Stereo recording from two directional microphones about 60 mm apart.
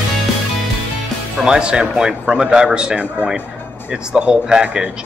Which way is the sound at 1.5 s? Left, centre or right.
Centre.